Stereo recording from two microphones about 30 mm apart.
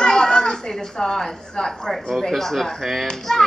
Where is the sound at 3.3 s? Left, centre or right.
Centre.